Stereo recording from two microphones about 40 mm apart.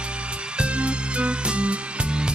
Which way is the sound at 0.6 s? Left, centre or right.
Right.